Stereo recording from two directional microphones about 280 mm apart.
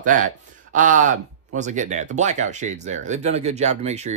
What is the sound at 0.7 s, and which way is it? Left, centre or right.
Speech, right.